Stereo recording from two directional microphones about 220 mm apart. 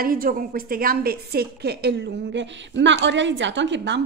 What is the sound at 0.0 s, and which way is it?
A woman's voice, 40° right (ahead or behind).